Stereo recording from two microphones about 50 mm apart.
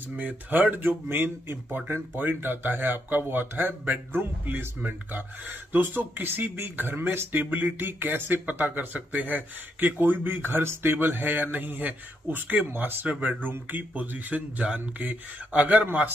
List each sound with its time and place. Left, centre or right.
0.1 s speech: right